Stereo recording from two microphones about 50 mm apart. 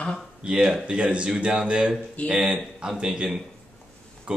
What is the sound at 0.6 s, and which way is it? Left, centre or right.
Speech, centre.